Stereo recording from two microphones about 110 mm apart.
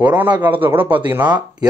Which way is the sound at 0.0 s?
15° right (ahead or behind).